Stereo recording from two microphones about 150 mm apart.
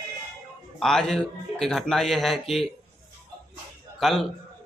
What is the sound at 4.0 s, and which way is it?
Speech, centre (ahead or behind).